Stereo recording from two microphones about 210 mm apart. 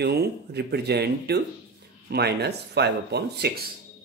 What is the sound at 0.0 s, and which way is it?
Speech, 50° right (ahead or behind).